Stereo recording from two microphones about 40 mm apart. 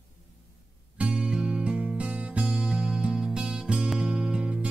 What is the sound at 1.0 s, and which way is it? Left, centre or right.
Music, right.